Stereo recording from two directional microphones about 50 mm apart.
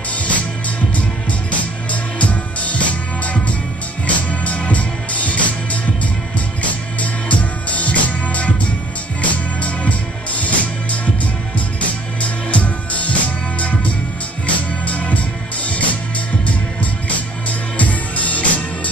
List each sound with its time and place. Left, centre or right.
0.1 s music: left
1.6 s music: left
4.1 s music: left
17.1 s music: left